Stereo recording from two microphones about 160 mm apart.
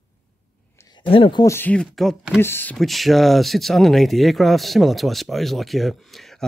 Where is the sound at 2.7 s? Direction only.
Centre (ahead or behind).